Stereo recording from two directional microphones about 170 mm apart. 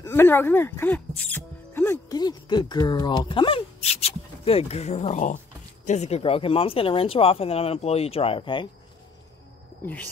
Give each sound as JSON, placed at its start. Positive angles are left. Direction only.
{"t": 0.0, "sound": "speech", "side_deg": 15}